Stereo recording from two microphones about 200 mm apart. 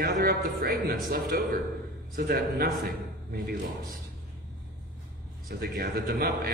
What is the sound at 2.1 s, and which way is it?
Speech, 50° right (ahead or behind).